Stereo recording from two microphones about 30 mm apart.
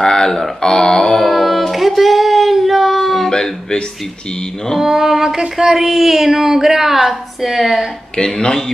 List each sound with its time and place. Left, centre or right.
0.0 s speech: left
1.1 s a sound: centre
3.3 s speech: left
4.7 s a woman's voice: centre
8.4 s speech: centre